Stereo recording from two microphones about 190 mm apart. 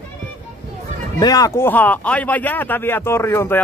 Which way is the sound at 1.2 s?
20° left (ahead or behind).